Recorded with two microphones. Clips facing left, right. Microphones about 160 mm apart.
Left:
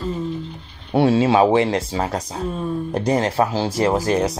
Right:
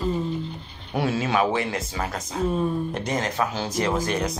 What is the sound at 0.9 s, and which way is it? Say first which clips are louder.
Speech: left 8 dB; 30° left (ahead or behind).